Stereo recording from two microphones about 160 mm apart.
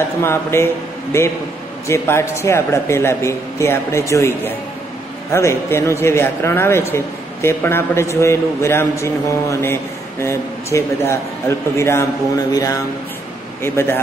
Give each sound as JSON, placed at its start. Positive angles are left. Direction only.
{"t": 0.2, "sound": "a man's voice", "side_deg": 15}
{"t": 13.6, "sound": "a man's voice", "side_deg": 15}